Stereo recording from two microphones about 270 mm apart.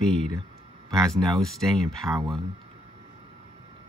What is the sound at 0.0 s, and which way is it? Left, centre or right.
Speech, centre.